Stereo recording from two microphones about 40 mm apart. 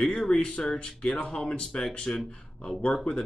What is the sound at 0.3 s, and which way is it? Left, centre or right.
Speech, left.